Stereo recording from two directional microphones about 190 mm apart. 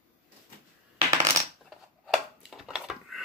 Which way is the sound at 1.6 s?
Centre (ahead or behind).